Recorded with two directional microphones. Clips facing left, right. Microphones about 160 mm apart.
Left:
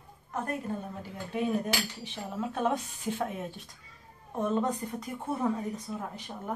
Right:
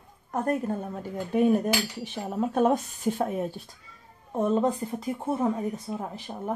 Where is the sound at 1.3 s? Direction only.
50° right (ahead or behind).